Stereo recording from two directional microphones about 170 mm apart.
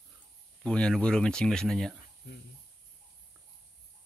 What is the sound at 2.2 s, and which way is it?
Speech, 85° left.